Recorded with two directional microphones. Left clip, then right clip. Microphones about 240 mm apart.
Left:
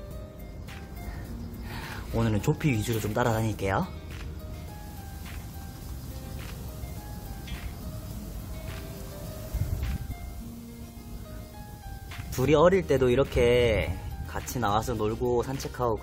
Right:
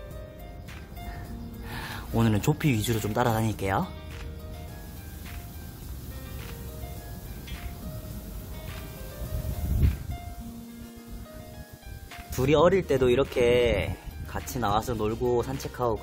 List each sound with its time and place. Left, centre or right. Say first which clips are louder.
1.8 s speech: right 2 dB; centre
12.4 s speech: even; centre